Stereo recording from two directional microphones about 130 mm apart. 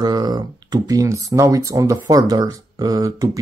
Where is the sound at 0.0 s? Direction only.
30° right (ahead or behind).